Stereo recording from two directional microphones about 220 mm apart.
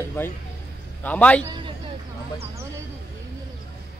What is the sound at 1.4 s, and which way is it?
Speech, 20° right (ahead or behind).